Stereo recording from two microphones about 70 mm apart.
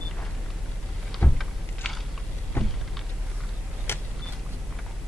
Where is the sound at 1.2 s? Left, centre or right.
Left.